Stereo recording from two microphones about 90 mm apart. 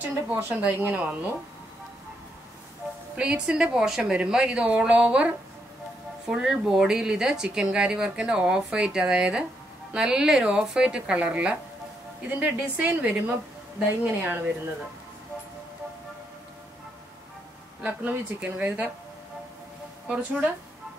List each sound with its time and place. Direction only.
0.0 s speech: 25° right (ahead or behind)
3.2 s speech: 10° right (ahead or behind)
17.8 s speech: 15° right (ahead or behind)
20.1 s speech: 15° right (ahead or behind)